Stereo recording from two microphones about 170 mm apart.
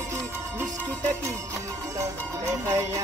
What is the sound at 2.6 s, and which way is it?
Music, 15° right (ahead or behind).